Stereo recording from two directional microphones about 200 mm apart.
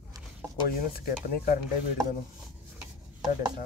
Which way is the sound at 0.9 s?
45° left (ahead or behind).